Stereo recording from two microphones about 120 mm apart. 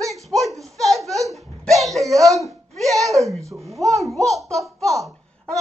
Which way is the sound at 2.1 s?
25° right (ahead or behind).